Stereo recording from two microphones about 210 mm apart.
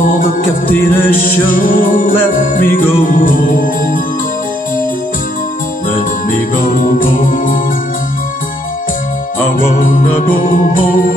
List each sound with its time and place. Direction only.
0.0 s music: 40° left (ahead or behind)
6.5 s music: 40° left (ahead or behind)
9.8 s music: 40° left (ahead or behind)